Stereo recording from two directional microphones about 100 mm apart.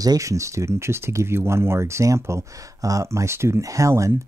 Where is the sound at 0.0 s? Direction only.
35° right (ahead or behind).